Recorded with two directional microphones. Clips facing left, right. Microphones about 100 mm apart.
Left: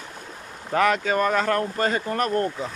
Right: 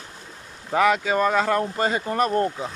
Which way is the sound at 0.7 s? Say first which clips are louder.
Right 1 dB; 10° right (ahead or behind).